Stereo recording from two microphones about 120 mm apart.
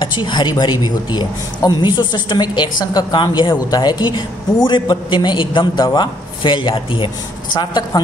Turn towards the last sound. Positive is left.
turn(degrees=40)  # may be behind; listen again after turning